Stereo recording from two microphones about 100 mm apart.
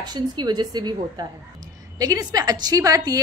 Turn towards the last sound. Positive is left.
turn(degrees=-35)  # may be behind; listen again after turning